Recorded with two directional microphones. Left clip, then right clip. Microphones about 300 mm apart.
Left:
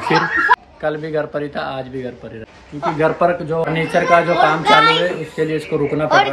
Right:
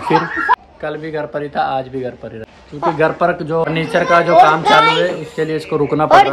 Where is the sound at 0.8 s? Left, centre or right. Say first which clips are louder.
Left 2 dB; centre.